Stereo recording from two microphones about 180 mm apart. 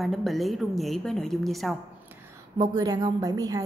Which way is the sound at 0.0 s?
Centre (ahead or behind).